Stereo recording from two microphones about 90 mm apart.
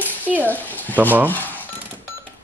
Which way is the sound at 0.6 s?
20° left (ahead or behind).